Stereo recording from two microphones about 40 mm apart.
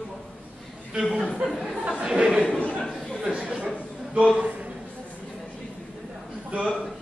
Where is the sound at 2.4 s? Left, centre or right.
Left.